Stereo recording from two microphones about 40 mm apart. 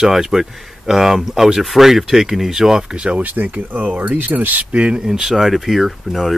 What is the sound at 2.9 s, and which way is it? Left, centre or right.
Speech, right.